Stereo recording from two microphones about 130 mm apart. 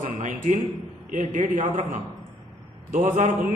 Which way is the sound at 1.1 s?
85° right.